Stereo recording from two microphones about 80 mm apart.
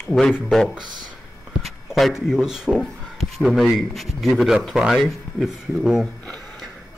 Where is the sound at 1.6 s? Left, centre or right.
Centre.